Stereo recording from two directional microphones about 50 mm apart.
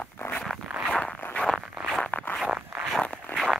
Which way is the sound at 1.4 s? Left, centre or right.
Left.